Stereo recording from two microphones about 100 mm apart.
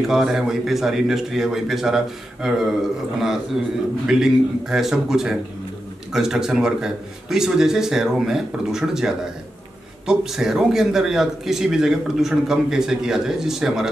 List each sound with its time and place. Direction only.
0.0 s a man's voice: 5° right (ahead or behind)
4.1 s a man's voice: 5° right (ahead or behind)